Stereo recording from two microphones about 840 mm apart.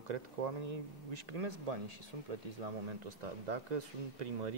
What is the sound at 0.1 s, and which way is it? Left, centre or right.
Speech, right.